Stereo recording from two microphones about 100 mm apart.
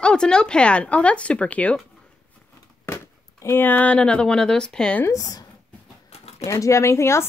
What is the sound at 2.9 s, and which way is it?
Speech, 25° left (ahead or behind).